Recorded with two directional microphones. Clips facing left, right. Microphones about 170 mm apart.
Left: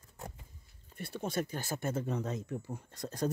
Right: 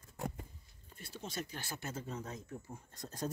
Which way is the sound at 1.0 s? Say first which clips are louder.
Left 8 dB; 60° left (ahead or behind).